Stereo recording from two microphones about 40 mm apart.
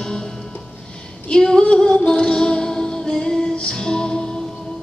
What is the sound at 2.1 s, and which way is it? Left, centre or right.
Music, left.